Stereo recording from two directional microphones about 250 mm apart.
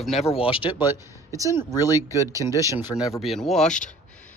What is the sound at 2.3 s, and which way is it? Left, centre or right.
Speech, centre.